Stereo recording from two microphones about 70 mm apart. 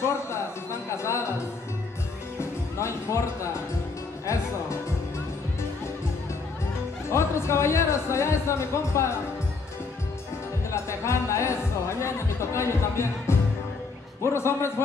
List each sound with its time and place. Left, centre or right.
0.0 s a sound: left
2.3 s music: left
7.1 s speech: left
10.7 s music: left
14.2 s a man's voice: left